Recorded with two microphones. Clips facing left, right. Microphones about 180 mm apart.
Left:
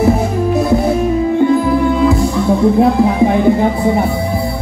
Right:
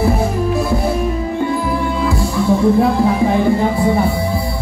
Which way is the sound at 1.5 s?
20° left (ahead or behind).